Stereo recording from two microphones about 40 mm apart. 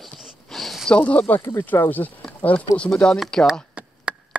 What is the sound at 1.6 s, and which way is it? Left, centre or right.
Speech, left.